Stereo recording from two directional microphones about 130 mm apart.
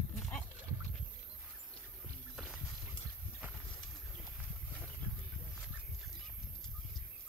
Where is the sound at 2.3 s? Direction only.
5° right (ahead or behind).